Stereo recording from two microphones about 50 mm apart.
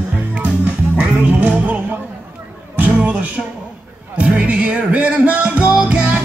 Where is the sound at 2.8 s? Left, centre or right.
Right.